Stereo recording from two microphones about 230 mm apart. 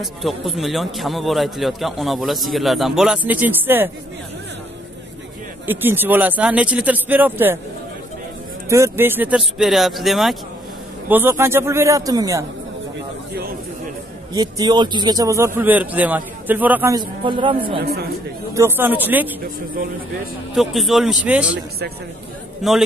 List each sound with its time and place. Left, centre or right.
0.0 s a man's voice: centre
5.7 s a man's voice: centre
8.6 s a man's voice: centre
14.3 s a man's voice: centre
18.5 s a man's voice: centre
20.5 s a man's voice: centre
21.5 s a man's voice: right
22.6 s a man's voice: centre